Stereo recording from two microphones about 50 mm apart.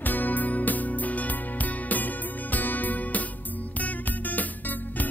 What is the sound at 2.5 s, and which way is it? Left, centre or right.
Music, left.